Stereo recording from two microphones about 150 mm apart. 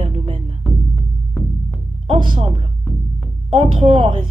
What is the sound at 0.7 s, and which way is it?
Music, 5° right (ahead or behind).